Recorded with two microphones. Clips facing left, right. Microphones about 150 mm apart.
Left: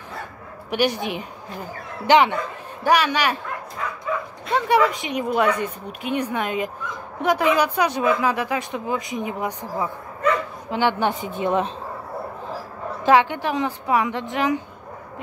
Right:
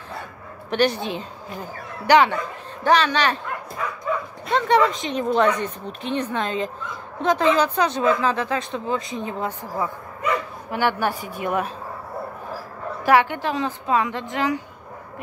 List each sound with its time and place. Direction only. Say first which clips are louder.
0.7 s a woman's voice: right 1 dB; 10° left (ahead or behind)
4.5 s a woman's voice: even; 10° left (ahead or behind)
13.0 s speech: left 1 dB; 15° left (ahead or behind)